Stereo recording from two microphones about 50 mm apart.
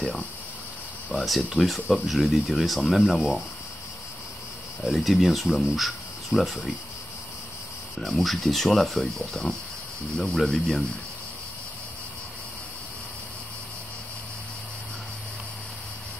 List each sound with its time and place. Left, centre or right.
1.1 s speech: left
1.6 s speech: centre
4.8 s speech: centre
8.0 s speech: centre